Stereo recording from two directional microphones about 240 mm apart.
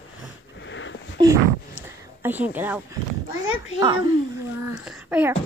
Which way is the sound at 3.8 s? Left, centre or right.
Centre.